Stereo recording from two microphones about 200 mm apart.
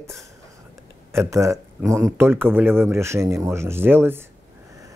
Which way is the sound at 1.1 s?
15° right (ahead or behind).